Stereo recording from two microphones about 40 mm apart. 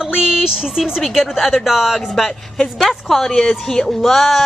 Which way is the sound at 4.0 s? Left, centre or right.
Centre.